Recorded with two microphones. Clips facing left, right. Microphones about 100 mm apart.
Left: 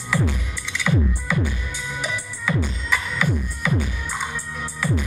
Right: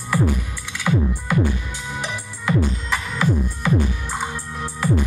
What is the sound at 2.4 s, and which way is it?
Music, 15° right (ahead or behind).